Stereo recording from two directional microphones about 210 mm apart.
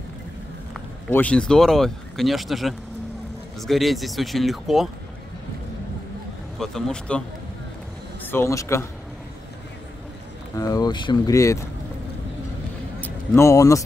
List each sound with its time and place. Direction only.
1.1 s speech: 5° left (ahead or behind)
6.6 s speech: 5° left (ahead or behind)
10.5 s speech: 15° left (ahead or behind)
13.0 s speech: 10° left (ahead or behind)